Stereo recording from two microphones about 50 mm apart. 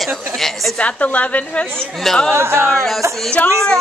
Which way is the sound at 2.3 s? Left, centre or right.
Right.